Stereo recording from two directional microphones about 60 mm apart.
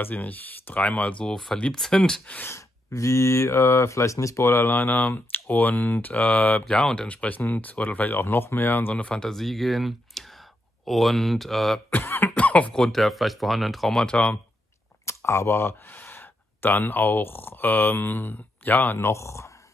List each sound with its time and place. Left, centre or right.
0.0 s speech: left; by 2.2 s centre
2.4 s speech: left
5.1 s speech: left
6.9 s speech: centre; by 8.9 s left
8.9 s speech: centre
9.3 s speech: centre
11.9 s cough: left
12.4 s a sound: left
12.7 s speech: centre
15.0 s speech: left
19.0 s speech: left